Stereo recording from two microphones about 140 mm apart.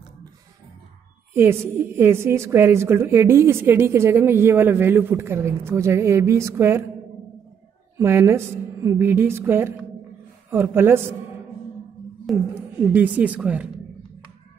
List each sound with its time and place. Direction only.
1.3 s a woman's voice: 15° right (ahead or behind)
8.0 s a woman's voice: 20° right (ahead or behind)
12.3 s speech: centre (ahead or behind)
12.8 s a woman's voice: 10° right (ahead or behind)